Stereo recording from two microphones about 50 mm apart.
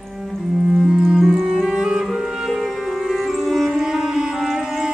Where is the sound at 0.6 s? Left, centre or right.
Centre.